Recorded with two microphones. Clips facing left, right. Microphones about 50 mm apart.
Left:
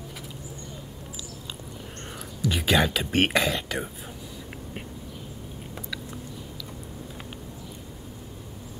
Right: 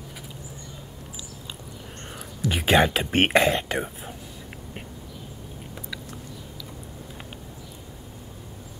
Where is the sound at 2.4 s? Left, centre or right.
Right.